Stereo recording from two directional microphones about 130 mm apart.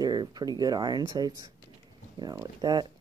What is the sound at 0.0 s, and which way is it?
Speech, 30° right (ahead or behind).